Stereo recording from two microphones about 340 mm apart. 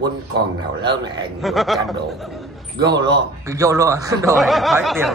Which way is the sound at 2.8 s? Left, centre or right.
Right.